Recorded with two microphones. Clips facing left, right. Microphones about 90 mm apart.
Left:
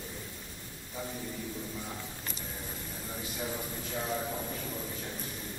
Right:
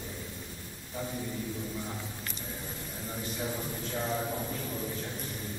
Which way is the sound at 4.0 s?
5° right (ahead or behind).